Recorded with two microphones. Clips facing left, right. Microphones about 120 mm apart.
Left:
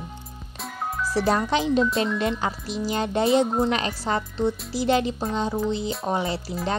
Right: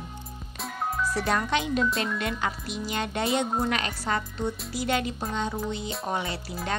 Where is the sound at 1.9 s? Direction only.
Centre (ahead or behind).